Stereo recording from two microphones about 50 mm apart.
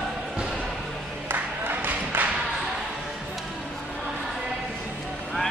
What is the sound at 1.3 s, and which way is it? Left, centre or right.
Music, right.